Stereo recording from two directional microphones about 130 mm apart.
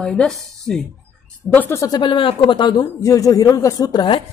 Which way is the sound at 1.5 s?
15° left (ahead or behind).